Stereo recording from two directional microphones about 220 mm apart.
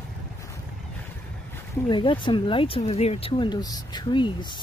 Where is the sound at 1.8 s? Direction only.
20° left (ahead or behind).